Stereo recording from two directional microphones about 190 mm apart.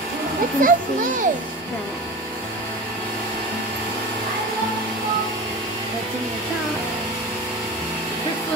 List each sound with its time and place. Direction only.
0.6 s a child's voice: 45° right (ahead or behind)